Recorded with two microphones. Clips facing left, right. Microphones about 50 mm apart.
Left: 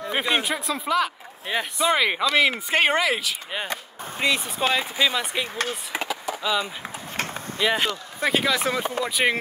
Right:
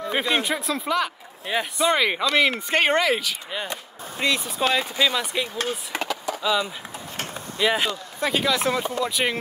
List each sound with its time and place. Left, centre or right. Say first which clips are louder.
0.1 s speech: even; centre
5.9 s a sound: left 2 dB; centre
7.6 s speech: right 1 dB; centre
8.8 s speech: left 1 dB; centre